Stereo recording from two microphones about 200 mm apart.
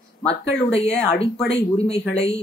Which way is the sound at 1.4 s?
30° left (ahead or behind).